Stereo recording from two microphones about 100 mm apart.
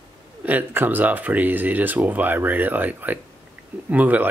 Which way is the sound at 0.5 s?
15° right (ahead or behind).